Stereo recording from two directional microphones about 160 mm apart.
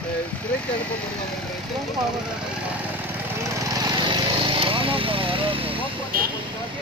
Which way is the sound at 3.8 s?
30° right (ahead or behind).